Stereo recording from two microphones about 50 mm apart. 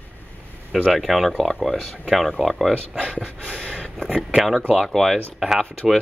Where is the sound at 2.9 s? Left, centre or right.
Centre.